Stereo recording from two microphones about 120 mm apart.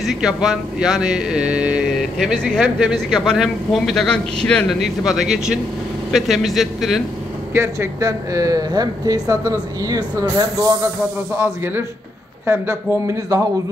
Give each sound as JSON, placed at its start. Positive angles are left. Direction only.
{"t": 0.0, "sound": "speech", "side_deg": -5}
{"t": 7.5, "sound": "speech", "side_deg": -25}